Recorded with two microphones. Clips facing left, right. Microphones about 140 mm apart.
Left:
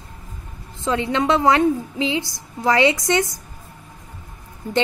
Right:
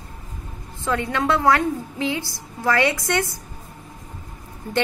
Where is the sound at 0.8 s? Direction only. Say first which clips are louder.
Left 2 dB; 20° left (ahead or behind).